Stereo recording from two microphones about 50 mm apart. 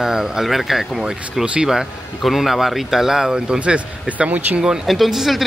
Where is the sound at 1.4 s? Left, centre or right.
Right.